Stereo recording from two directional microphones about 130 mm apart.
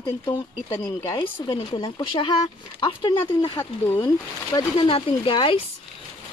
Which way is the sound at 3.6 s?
15° left (ahead or behind).